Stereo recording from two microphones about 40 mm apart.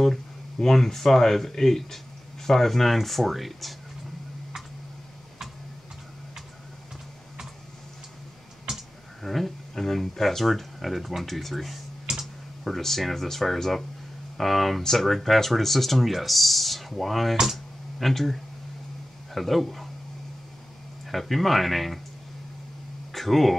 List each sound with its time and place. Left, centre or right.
0.0 s speech: centre
8.6 s speech: centre
12.1 s computer keyboard: centre
12.6 s speech: centre
21.1 s speech: centre
23.1 s speech: centre